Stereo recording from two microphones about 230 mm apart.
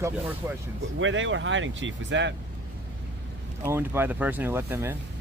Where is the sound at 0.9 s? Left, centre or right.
Right.